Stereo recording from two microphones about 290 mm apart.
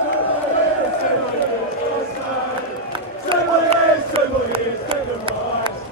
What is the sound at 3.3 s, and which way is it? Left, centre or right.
Chant, right.